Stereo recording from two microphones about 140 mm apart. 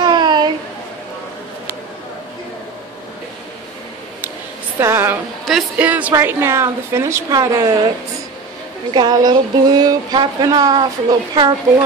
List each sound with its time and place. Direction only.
0.0 s a sound: 30° right (ahead or behind)
4.7 s a woman's voice: 20° right (ahead or behind)
8.9 s speech: 30° right (ahead or behind)